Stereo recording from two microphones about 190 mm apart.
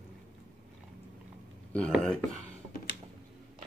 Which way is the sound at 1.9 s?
Centre (ahead or behind).